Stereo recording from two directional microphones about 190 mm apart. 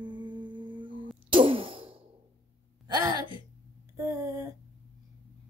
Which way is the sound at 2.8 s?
20° right (ahead or behind).